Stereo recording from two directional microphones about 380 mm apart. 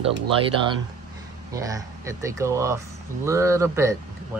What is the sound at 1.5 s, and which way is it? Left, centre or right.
Speech, centre.